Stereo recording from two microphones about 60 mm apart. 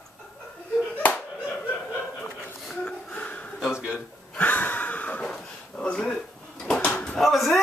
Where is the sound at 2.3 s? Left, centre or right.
Centre.